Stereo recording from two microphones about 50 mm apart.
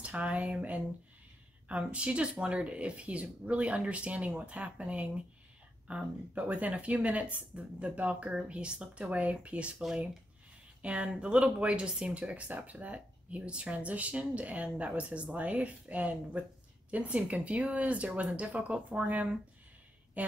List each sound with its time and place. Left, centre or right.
0.0 s a woman's voice: right